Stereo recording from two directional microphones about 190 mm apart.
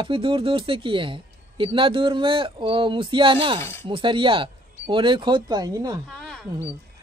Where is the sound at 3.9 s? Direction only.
25° right (ahead or behind).